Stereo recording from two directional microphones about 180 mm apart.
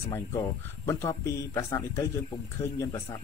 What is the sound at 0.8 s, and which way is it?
Speech, 15° left (ahead or behind).